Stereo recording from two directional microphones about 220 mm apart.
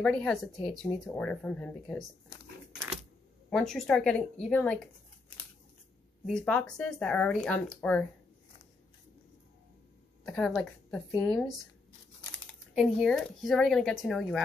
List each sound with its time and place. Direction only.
0.0 s speech: 5° left (ahead or behind)
3.4 s speech: centre (ahead or behind)
6.2 s speech: 5° left (ahead or behind)
10.2 s speech: 5° left (ahead or behind)